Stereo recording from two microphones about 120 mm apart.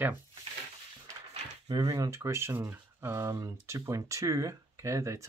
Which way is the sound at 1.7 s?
35° right (ahead or behind).